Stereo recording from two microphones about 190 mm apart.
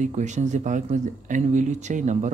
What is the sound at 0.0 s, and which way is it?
Speech, 40° right (ahead or behind).